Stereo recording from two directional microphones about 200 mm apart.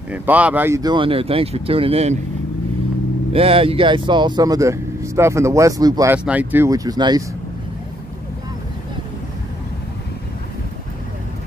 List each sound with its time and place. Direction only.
0.1 s speech: 5° right (ahead or behind); by 2.1 s 30° right (ahead or behind)
3.3 s speech: 30° right (ahead or behind)
6.1 s speech: 5° right (ahead or behind)